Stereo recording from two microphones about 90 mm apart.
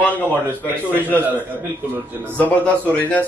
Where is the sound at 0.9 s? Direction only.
20° left (ahead or behind).